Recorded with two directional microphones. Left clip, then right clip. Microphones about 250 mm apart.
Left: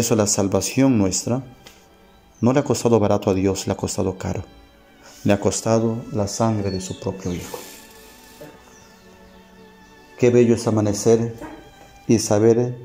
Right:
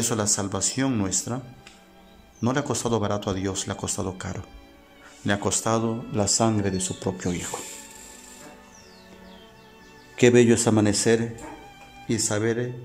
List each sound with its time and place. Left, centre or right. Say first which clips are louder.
0.0 s speech: left 7 dB; centre
2.4 s speech: left 7 dB; centre
6.2 s speech: left 1 dB; centre
10.1 s a man's voice: left 2 dB; centre
12.3 s speech: left 10 dB; centre